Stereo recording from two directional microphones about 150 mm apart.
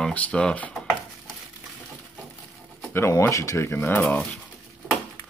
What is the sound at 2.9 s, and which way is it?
Speech, 20° left (ahead or behind).